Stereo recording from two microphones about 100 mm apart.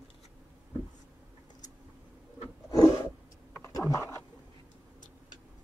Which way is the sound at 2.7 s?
35° left (ahead or behind).